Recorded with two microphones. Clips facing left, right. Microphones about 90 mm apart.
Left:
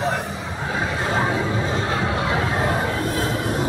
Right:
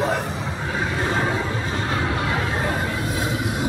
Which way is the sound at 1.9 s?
20° left (ahead or behind).